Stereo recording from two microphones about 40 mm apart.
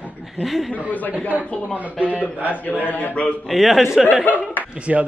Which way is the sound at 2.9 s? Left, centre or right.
Left.